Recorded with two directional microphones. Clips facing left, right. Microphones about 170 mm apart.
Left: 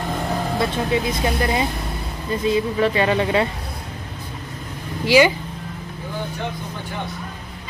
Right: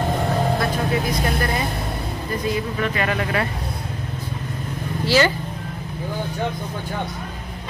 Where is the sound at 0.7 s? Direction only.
25° left (ahead or behind).